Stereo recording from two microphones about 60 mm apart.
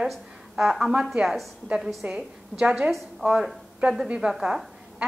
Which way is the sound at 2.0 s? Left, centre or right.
Centre.